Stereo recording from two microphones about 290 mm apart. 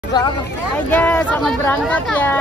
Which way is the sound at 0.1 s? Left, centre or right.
Centre.